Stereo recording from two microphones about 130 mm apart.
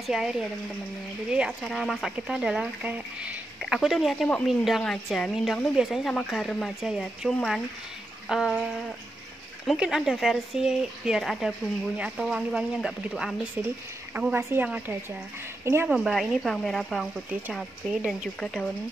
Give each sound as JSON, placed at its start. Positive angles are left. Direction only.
{"t": 0.0, "sound": "a woman's voice", "side_deg": -5}
{"t": 9.7, "sound": "a woman's voice", "side_deg": 0}
{"t": 14.1, "sound": "a woman's voice", "side_deg": -15}
{"t": 15.9, "sound": "a woman's voice", "side_deg": -5}
{"t": 18.4, "sound": "speech", "side_deg": 5}